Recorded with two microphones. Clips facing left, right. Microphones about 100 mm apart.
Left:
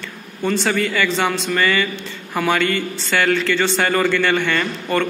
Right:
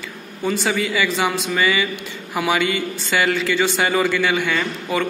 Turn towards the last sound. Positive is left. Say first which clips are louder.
# left 2 dB
turn(degrees=-5)  # may be behind; listen again after turning